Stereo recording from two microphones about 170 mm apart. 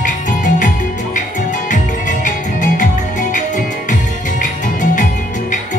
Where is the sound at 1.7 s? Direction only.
50° left (ahead or behind).